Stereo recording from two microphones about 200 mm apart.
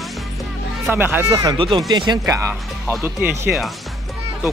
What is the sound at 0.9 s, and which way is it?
Speech, 10° right (ahead or behind).